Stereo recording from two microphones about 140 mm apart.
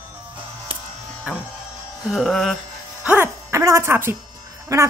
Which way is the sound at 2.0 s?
Centre (ahead or behind).